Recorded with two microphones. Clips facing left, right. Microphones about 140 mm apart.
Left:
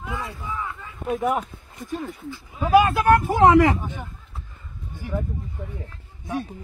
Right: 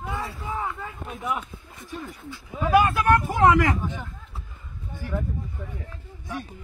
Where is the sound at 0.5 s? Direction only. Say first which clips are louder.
Right 2 dB; 45° right (ahead or behind).